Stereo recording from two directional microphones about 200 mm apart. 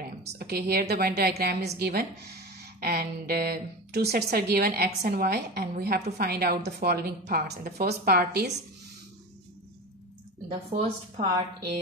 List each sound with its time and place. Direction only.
0.0 s a woman's voice: 50° right (ahead or behind)
10.7 s a woman's voice: 30° right (ahead or behind)